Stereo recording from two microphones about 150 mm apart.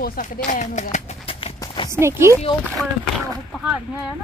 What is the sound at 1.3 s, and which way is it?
Clip-clop, 35° left (ahead or behind).